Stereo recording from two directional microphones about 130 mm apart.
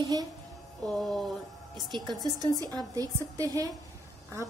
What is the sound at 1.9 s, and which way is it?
A woman's voice, 35° right (ahead or behind).